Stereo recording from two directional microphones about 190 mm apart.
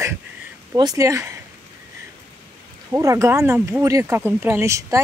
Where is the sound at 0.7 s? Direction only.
20° right (ahead or behind).